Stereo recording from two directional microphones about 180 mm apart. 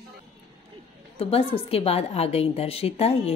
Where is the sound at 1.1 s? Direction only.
30° left (ahead or behind).